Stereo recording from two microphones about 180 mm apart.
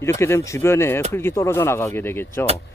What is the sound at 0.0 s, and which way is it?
Speech, 15° left (ahead or behind).